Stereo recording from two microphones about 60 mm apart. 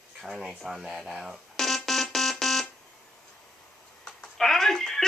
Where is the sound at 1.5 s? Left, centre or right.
Centre.